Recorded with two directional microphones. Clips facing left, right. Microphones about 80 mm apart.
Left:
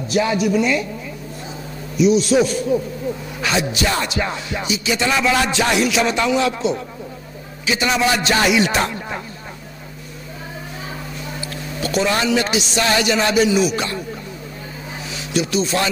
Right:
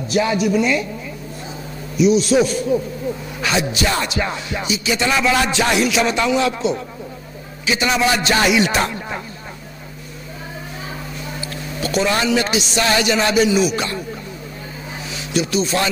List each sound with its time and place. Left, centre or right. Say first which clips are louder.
0.1 s music: even; centre
2.0 s music: even; centre
3.3 s a sound: even; centre
3.7 s music: even; centre
11.4 s music: even; centre
15.0 s speech: even; centre